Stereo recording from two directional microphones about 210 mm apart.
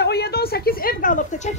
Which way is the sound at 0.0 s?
50° left (ahead or behind).